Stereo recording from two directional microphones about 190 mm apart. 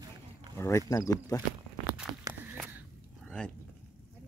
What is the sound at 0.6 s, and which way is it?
Speech, 15° left (ahead or behind).